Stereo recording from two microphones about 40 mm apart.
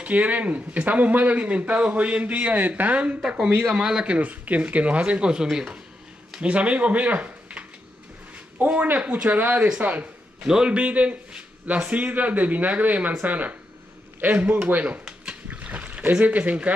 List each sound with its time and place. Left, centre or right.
0.0 s speech: right
2.5 s speech: right
3.3 s speech: right
4.0 s speech: right
5.3 s speech: centre
6.4 s speech: right
10.4 s a man's voice: centre
10.7 s speech: right
15.0 s a sound: right